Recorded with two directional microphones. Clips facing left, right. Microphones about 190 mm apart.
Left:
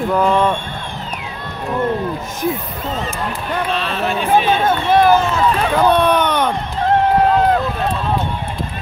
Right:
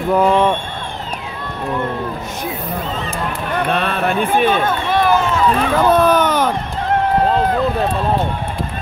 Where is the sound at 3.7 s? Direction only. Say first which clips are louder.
Right 4 dB; 55° right (ahead or behind).